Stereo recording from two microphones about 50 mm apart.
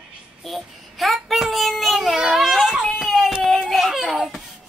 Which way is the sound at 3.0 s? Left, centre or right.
Centre.